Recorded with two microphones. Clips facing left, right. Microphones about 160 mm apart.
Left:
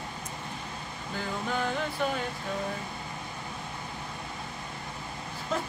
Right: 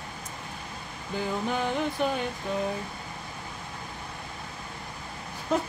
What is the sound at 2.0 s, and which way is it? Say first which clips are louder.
Speech: right 2 dB; 20° right (ahead or behind).